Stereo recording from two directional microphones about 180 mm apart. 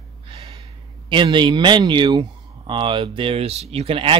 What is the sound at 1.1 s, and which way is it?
Speech, 25° right (ahead or behind).